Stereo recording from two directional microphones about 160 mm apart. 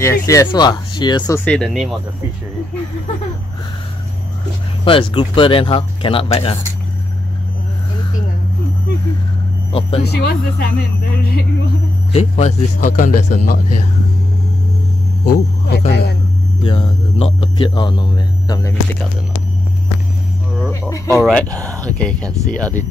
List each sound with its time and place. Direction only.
0.0 s speech: 20° left (ahead or behind)
1.4 s speech: 5° left (ahead or behind)
4.8 s speech: 35° left (ahead or behind)
9.7 s speech: 35° left (ahead or behind)
10.0 s speech: 75° left (ahead or behind)
12.1 s a man's voice: 40° left (ahead or behind)
15.2 s speech: 80° left
16.6 s speech: 35° left (ahead or behind)
21.2 s speech: 5° left (ahead or behind)